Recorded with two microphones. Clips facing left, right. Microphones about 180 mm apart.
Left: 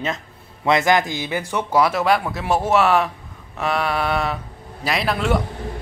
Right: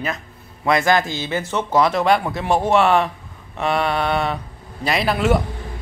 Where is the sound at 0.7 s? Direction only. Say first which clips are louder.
Even; 20° left (ahead or behind); by 3.1 s 5° left (ahead or behind).